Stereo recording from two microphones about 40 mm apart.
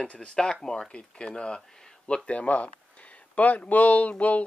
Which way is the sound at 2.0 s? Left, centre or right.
Left.